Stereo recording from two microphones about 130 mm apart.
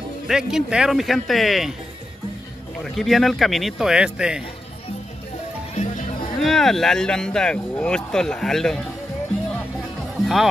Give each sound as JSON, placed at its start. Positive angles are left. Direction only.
{"t": 0.3, "sound": "speech", "side_deg": -5}
{"t": 2.8, "sound": "speech", "side_deg": 0}
{"t": 5.8, "sound": "music", "side_deg": 65}
{"t": 6.4, "sound": "speech", "side_deg": 0}
{"t": 10.2, "sound": "speech", "side_deg": 0}